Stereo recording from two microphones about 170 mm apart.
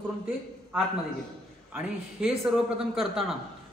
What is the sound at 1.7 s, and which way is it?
A man's voice, 5° right (ahead or behind).